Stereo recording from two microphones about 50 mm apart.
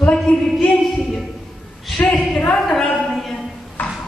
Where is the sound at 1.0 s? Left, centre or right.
Centre.